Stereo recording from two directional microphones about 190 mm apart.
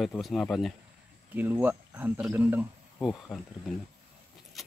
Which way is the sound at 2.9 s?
5° left (ahead or behind).